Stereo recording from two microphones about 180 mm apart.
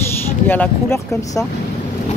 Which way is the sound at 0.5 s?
10° left (ahead or behind).